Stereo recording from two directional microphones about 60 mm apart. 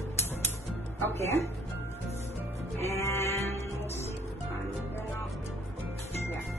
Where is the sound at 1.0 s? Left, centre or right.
Left.